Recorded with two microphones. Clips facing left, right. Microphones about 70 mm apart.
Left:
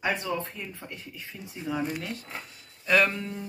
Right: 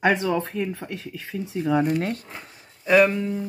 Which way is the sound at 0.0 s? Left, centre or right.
Right.